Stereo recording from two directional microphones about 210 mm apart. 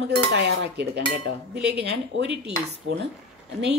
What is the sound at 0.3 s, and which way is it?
A woman's voice, 55° right (ahead or behind).